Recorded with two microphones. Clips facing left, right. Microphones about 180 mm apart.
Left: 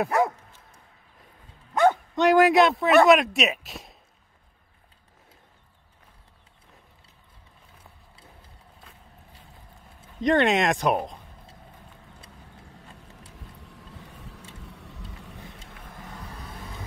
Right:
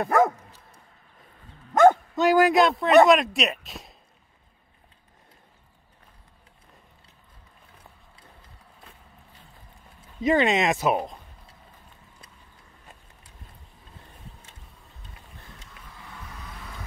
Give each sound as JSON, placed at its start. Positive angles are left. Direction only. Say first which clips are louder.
{"t": 0.1, "sound": "dog", "louder": "right 3 dB", "side_deg": -45}
{"t": 1.7, "sound": "dog", "louder": "right 4 dB", "side_deg": -45}
{"t": 2.1, "sound": "speech", "louder": "left 1 dB", "side_deg": 0}
{"t": 10.2, "sound": "speech", "louder": "even", "side_deg": 0}
{"t": 12.6, "sound": "a sound", "louder": "left 5 dB", "side_deg": 75}
{"t": 13.6, "sound": "vehicle", "louder": "left 6 dB", "side_deg": 75}
{"t": 15.8, "sound": "vehicle", "louder": "left 3 dB", "side_deg": 45}